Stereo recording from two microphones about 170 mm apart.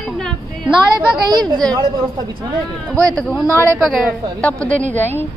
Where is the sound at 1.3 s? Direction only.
25° right (ahead or behind).